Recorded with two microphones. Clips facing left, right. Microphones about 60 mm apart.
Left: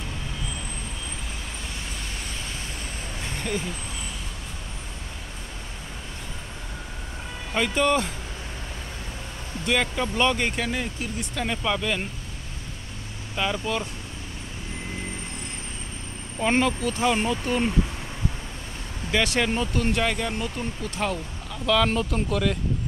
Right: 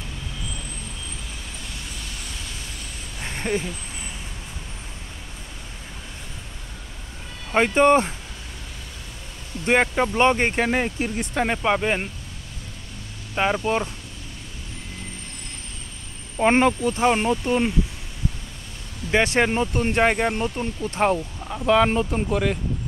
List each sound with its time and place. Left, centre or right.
3.3 s vehicle: right
7.5 s speech: right
9.7 s speech: right
13.3 s speech: right
16.3 s speech: right
19.0 s speech: right